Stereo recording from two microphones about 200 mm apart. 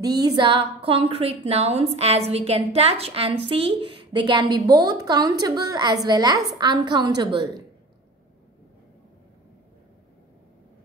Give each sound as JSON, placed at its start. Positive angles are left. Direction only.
{"t": 0.0, "sound": "a woman's voice", "side_deg": -20}